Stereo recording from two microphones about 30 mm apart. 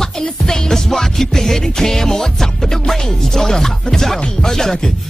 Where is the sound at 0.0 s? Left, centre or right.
Centre.